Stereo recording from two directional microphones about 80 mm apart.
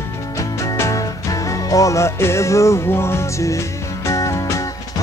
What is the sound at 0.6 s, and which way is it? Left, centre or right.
Music, left.